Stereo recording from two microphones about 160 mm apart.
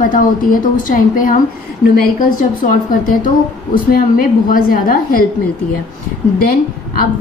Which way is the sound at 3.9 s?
60° left (ahead or behind).